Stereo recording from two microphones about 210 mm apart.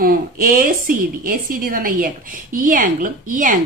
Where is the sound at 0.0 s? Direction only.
40° right (ahead or behind).